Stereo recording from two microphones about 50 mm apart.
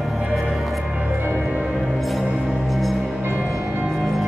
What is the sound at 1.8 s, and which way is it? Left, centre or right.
Music, centre.